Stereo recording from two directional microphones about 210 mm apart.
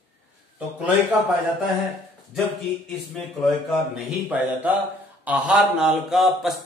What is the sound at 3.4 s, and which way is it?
Speech, 5° right (ahead or behind).